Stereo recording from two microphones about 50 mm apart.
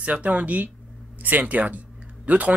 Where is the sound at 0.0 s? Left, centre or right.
Right.